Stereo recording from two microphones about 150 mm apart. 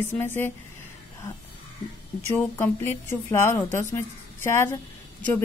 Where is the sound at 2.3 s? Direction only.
15° left (ahead or behind).